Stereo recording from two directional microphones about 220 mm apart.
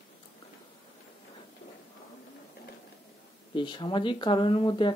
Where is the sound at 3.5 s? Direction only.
20° left (ahead or behind).